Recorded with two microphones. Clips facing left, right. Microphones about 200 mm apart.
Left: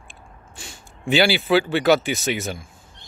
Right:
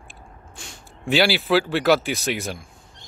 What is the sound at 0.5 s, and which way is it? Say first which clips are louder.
Speech: left 2 dB; centre (ahead or behind).